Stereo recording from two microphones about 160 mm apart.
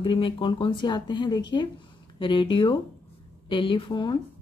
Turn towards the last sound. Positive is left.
turn(degrees=30)  # may be behind; listen again after turning